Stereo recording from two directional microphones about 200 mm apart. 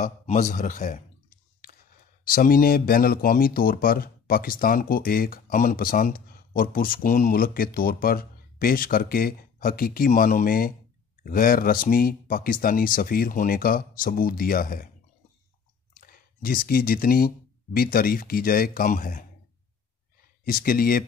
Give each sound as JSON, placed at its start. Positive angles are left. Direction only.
{"t": 0.0, "sound": "a man's voice", "side_deg": 40}
{"t": 2.2, "sound": "speech", "side_deg": 45}
{"t": 15.9, "sound": "speech", "side_deg": 45}
{"t": 20.4, "sound": "speech", "side_deg": 45}